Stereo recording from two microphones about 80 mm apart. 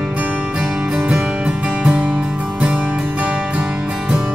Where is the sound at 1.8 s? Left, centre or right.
Centre.